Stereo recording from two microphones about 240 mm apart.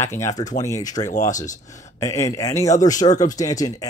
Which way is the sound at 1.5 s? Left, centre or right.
Left.